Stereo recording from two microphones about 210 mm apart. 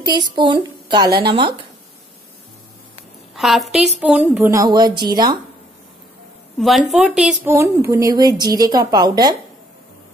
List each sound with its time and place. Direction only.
0.0 s a woman's voice: 20° right (ahead or behind)
3.3 s a woman's voice: centre (ahead or behind); by 5.4 s 20° right (ahead or behind)
6.9 s a woman's voice: centre (ahead or behind); by 9.4 s 20° right (ahead or behind)